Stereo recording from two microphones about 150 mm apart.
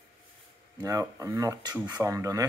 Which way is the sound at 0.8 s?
20° right (ahead or behind).